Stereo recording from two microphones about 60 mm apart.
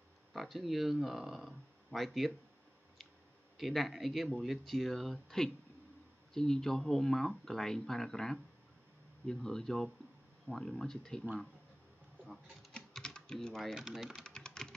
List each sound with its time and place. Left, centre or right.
0.3 s speech: centre
3.5 s speech: centre
12.7 s typing: centre
13.7 s speech: centre
14.2 s typing: centre